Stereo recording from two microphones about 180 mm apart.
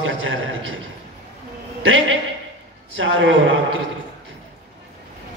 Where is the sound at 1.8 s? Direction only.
90° right.